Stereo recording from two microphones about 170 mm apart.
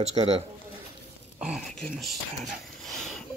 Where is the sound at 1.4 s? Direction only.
Centre (ahead or behind).